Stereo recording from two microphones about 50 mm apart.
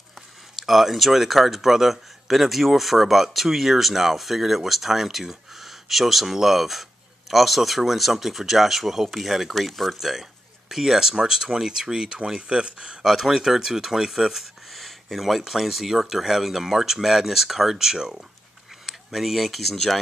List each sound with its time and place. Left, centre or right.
0.6 s speech: centre